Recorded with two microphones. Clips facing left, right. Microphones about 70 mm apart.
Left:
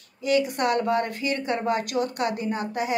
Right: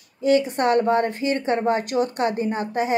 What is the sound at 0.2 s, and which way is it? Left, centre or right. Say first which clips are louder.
A woman's voice: right 4 dB; right.